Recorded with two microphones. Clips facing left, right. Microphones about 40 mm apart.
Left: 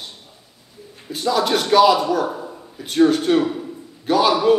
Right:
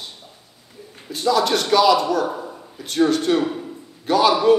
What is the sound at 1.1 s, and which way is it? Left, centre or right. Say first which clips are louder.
A man's voice: even; centre.